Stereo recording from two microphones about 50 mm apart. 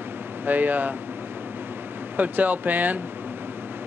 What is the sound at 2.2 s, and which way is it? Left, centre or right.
Speech, right.